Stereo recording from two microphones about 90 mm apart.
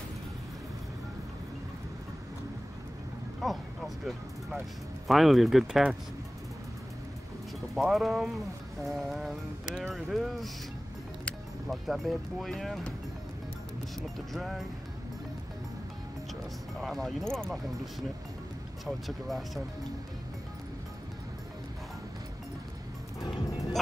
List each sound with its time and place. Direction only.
3.4 s speech: centre (ahead or behind)
7.7 s speech: centre (ahead or behind)
11.6 s speech: centre (ahead or behind)
14.3 s speech: centre (ahead or behind)
16.8 s speech: centre (ahead or behind)
18.9 s speech: centre (ahead or behind)
23.2 s music: 40° left (ahead or behind)